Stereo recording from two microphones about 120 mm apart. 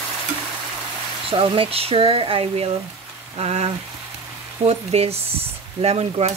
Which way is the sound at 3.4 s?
65° right (ahead or behind).